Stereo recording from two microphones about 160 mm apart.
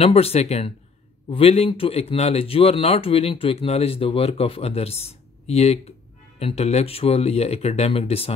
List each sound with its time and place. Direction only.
0.0 s speech: 40° left (ahead or behind)